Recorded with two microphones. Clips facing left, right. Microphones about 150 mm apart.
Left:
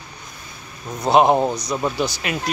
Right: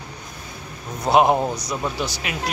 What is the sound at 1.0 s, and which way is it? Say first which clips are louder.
Speech: left 2 dB; 5° right (ahead or behind).